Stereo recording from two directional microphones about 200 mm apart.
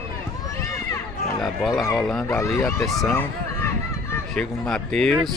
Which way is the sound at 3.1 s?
10° left (ahead or behind).